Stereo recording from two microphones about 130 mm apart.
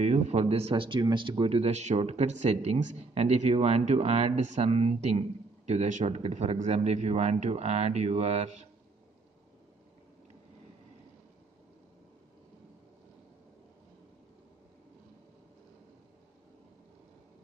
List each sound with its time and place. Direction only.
0.0 s speech: 55° right (ahead or behind)
5.7 s speech: 65° right (ahead or behind)